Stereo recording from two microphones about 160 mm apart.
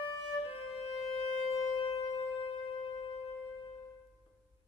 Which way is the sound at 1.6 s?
30° left (ahead or behind).